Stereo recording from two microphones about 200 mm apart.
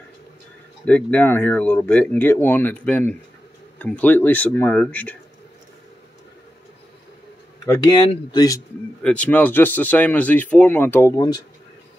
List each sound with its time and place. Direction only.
0.8 s speech: 5° left (ahead or behind)
7.6 s speech: 15° left (ahead or behind)
8.0 s speech: 25° left (ahead or behind)
9.0 s speech: 5° left (ahead or behind)